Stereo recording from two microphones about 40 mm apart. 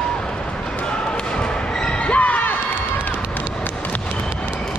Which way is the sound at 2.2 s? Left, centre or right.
Left.